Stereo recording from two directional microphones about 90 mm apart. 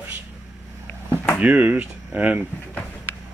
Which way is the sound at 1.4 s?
15° right (ahead or behind).